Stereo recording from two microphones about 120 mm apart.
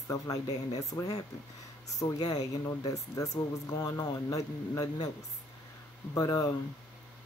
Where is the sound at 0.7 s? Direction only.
30° left (ahead or behind).